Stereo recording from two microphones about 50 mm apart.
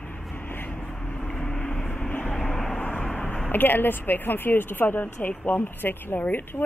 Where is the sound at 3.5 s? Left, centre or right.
Left.